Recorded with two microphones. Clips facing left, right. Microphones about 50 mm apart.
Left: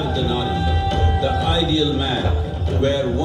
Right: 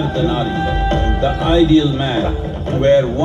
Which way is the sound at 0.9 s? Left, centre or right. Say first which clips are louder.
Right 3 dB; right.